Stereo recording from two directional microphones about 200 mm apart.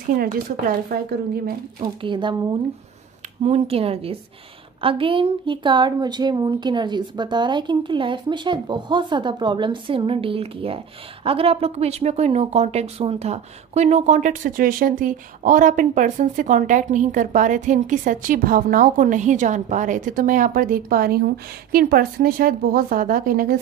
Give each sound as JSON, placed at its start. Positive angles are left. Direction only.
{"t": 1.3, "sound": "a woman's voice", "side_deg": -45}
{"t": 1.8, "sound": "a woman's voice", "side_deg": -25}
{"t": 3.4, "sound": "a woman's voice", "side_deg": -30}